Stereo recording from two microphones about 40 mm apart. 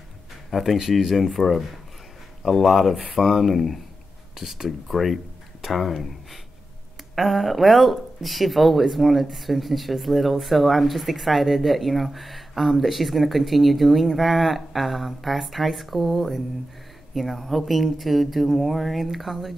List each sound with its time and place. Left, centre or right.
0.5 s speech: centre